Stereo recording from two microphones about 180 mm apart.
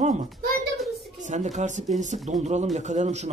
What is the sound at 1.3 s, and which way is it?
Speech, 40° right (ahead or behind).